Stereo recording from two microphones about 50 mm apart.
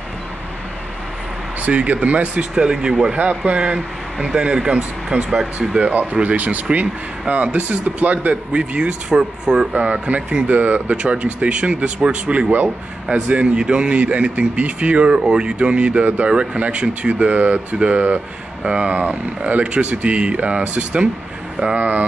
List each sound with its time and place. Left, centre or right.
1.6 s speech: right
3.2 s speech: right